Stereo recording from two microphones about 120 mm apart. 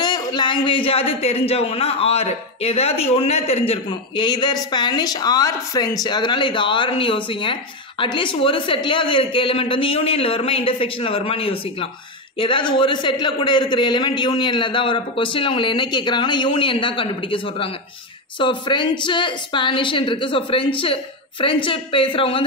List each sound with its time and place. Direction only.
0.0 s a man's voice: 35° left (ahead or behind)